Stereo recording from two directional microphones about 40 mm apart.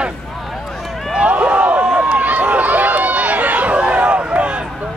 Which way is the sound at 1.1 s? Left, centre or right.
Right.